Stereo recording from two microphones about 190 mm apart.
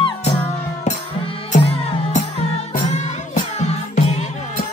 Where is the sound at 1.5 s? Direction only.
40° left (ahead or behind).